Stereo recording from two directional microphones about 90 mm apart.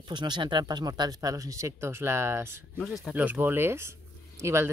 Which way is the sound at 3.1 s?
20° right (ahead or behind).